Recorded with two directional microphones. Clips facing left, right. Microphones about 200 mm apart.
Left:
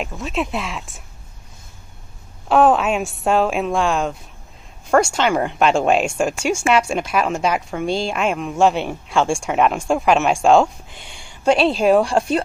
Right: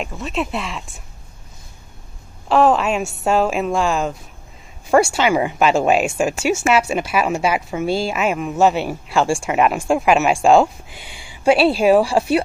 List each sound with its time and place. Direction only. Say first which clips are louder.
0.0 s speech: even; centre (ahead or behind)
2.4 s speech: even; centre (ahead or behind)